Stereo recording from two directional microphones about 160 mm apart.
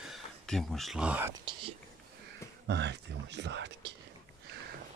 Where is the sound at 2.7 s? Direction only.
90° right.